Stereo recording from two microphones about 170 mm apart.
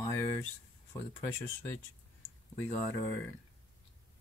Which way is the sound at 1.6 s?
15° left (ahead or behind).